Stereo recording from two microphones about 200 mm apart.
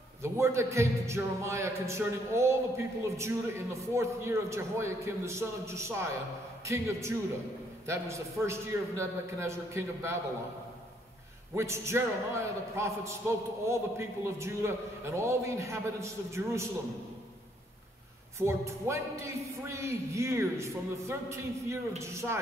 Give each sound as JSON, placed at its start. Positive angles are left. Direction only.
{"t": 0.2, "sound": "a man's voice", "side_deg": -15}
{"t": 11.5, "sound": "a man's voice", "side_deg": -15}
{"t": 18.4, "sound": "a man's voice", "side_deg": -15}